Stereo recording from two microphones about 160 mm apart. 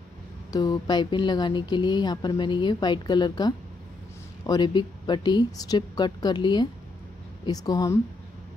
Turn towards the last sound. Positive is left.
turn(degrees=20)  # may be behind; listen again after turning